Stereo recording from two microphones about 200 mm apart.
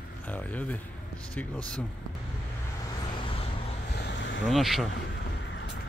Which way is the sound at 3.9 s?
60° left (ahead or behind).